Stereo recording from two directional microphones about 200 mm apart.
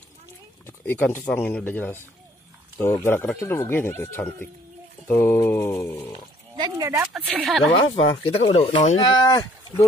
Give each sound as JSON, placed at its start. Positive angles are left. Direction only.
{"t": 0.7, "sound": "speech", "side_deg": 10}
{"t": 6.5, "sound": "speech", "side_deg": -20}
{"t": 7.2, "sound": "speech", "side_deg": 0}
{"t": 7.7, "sound": "speech", "side_deg": 25}